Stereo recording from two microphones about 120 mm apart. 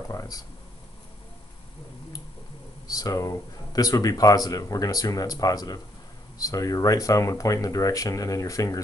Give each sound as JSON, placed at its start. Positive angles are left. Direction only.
{"t": 0.1, "sound": "speech", "side_deg": 30}
{"t": 2.9, "sound": "speech", "side_deg": 30}